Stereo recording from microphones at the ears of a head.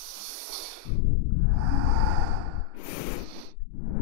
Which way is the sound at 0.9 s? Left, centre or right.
Left.